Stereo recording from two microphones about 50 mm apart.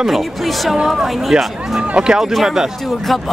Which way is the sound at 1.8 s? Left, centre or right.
Centre.